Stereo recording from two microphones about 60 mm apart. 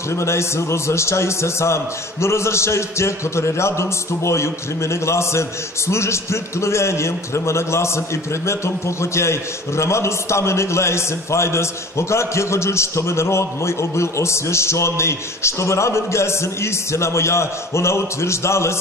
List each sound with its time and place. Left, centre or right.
0.1 s a man's voice: left